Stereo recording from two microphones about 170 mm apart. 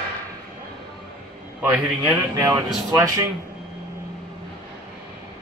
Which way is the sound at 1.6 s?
10° right (ahead or behind).